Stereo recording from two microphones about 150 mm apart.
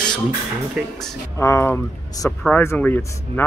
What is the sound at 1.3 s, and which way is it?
Speech, 20° left (ahead or behind).